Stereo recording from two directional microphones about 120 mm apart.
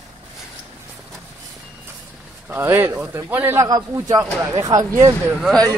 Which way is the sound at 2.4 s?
15° right (ahead or behind).